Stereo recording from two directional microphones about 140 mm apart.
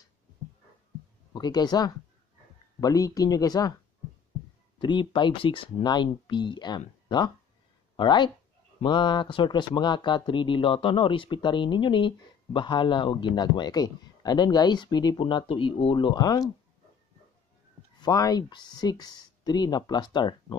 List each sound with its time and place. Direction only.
1.3 s speech: 30° left (ahead or behind)
4.7 s a man's voice: 35° left (ahead or behind)
7.9 s a man's voice: 35° left (ahead or behind)
17.9 s speech: 30° left (ahead or behind)